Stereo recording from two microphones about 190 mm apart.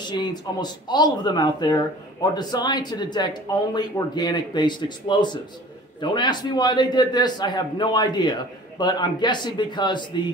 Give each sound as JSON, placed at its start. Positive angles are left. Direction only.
{"t": 0.1, "sound": "a man's voice", "side_deg": 20}